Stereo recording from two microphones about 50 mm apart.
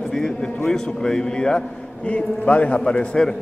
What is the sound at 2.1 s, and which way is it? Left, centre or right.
A man's voice, left.